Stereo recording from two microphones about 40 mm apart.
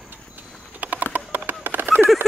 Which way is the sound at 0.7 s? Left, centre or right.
Right.